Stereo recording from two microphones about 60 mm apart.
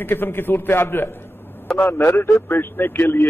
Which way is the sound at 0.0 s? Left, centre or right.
Left.